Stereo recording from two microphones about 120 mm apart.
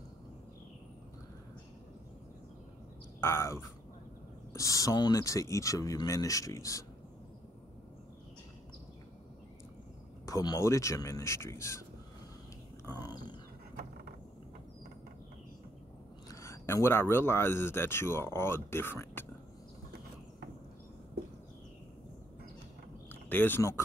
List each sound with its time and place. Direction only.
3.2 s speech: 20° left (ahead or behind)
10.2 s speech: 30° left (ahead or behind)
12.8 s speech: 35° left (ahead or behind)
16.3 s speech: 25° left (ahead or behind)
23.0 s a sound: 15° left (ahead or behind)